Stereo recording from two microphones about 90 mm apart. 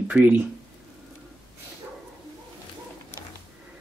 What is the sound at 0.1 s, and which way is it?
Speech, 20° right (ahead or behind).